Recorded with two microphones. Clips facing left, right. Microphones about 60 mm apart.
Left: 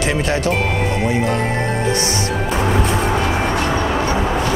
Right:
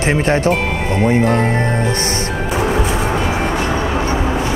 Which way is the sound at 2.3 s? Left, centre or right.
Centre.